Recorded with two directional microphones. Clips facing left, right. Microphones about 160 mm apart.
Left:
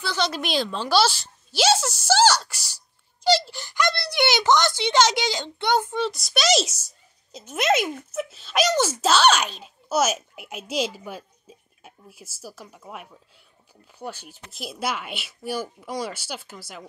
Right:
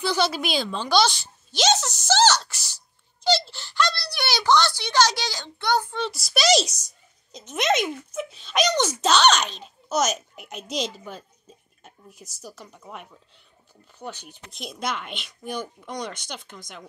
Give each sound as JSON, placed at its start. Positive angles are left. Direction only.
{"t": 0.0, "sound": "speech", "side_deg": -15}
{"t": 0.3, "sound": "a child's voice", "side_deg": 0}
{"t": 5.9, "sound": "a child's voice", "side_deg": 0}